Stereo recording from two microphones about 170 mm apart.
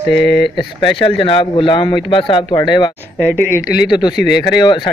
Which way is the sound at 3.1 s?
10° left (ahead or behind).